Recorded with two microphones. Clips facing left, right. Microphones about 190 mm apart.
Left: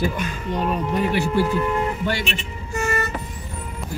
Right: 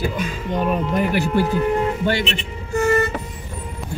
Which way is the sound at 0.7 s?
55° right (ahead or behind).